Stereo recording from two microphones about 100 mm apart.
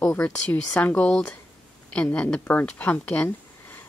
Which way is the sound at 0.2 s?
15° left (ahead or behind).